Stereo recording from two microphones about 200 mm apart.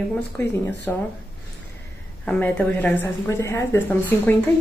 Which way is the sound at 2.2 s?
5° left (ahead or behind).